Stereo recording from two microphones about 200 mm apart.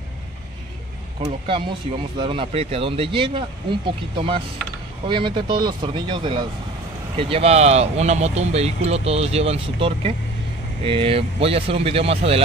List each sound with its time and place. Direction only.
1.5 s speech: 25° right (ahead or behind)